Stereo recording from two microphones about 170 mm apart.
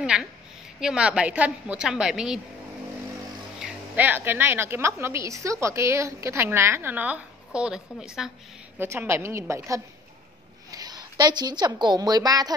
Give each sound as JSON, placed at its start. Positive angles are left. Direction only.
{"t": 0.0, "sound": "a sound", "side_deg": -5}
{"t": 0.7, "sound": "a woman's voice", "side_deg": -5}
{"t": 3.6, "sound": "a woman's voice", "side_deg": -10}
{"t": 8.7, "sound": "a woman's voice", "side_deg": -15}